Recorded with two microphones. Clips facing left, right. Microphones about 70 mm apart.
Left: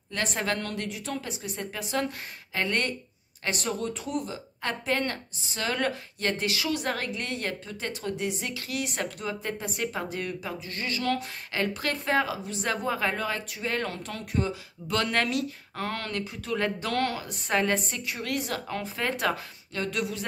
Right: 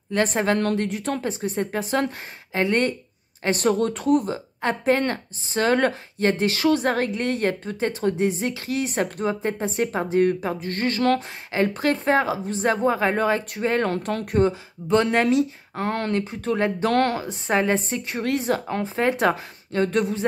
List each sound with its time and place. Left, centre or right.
0.1 s speech: right
2.5 s speech: right
3.4 s speech: right
4.6 s speech: right
11.5 s speech: right
14.9 s speech: right
16.8 s speech: right
17.2 s speech: right